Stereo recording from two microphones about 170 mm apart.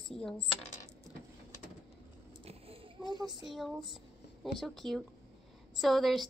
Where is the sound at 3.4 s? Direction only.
Centre (ahead or behind).